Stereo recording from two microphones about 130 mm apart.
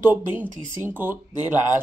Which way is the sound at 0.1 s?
15° right (ahead or behind).